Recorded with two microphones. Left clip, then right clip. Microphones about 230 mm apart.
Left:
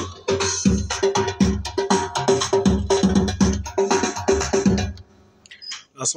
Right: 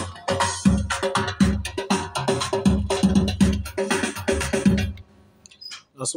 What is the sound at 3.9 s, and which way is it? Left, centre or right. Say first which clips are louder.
Music: left 4 dB; right.